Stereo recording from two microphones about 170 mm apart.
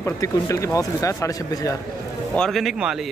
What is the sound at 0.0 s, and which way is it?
Speech, 15° left (ahead or behind).